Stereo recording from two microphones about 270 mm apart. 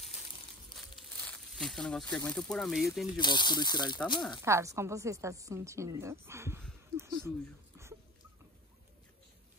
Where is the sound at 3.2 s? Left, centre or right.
Centre.